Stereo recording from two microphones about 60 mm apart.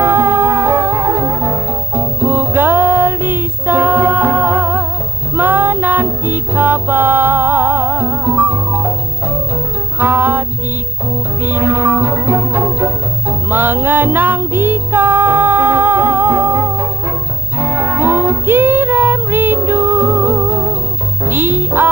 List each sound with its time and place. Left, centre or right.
0.0 s music: right
9.9 s music: right
11.4 s music: right